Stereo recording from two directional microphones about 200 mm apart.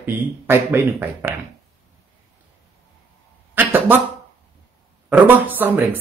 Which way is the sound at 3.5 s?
10° right (ahead or behind).